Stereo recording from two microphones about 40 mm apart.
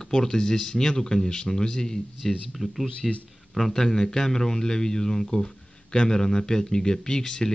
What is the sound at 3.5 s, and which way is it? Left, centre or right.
Speech, centre.